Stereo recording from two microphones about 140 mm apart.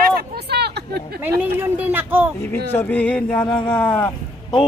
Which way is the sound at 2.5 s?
15° left (ahead or behind).